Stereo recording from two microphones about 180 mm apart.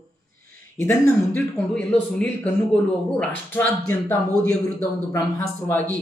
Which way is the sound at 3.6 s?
15° left (ahead or behind).